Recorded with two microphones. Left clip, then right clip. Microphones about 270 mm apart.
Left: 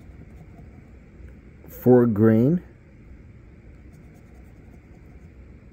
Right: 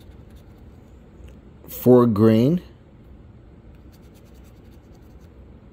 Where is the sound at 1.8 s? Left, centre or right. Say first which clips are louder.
Right 2 dB; centre.